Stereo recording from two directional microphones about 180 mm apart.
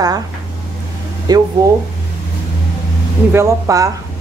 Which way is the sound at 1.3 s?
20° right (ahead or behind).